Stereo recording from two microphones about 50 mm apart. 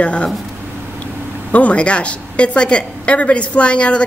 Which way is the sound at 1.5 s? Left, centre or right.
Left.